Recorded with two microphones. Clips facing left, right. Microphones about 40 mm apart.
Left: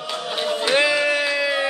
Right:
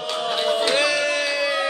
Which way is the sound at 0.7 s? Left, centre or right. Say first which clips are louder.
Left 2 dB; centre.